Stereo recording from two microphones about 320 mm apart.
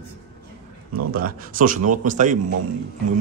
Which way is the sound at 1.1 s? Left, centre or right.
Right.